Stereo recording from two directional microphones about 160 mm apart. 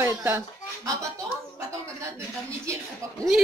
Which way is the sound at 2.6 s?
20° right (ahead or behind).